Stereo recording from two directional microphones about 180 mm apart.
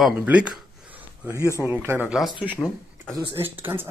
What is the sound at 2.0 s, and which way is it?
Speech, centre (ahead or behind).